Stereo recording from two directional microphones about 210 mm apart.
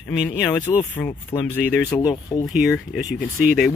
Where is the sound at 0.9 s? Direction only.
10° left (ahead or behind).